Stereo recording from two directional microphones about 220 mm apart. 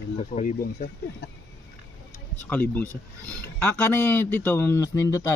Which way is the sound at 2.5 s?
10° left (ahead or behind).